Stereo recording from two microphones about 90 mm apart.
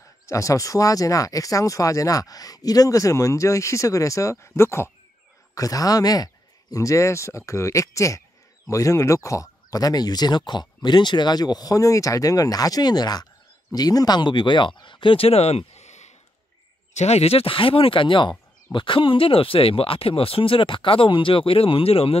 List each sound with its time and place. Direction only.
0.3 s speech: 35° left (ahead or behind)
5.5 s speech: 40° left (ahead or behind); by 15.4 s 90° left
17.3 s speech: 85° left